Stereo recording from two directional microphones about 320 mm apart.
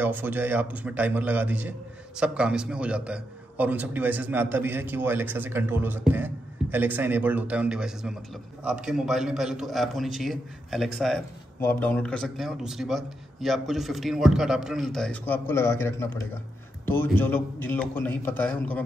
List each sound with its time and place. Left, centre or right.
0.0 s a man's voice: centre